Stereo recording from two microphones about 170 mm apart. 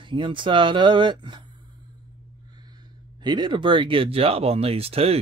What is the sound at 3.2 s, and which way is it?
Speech, 25° right (ahead or behind).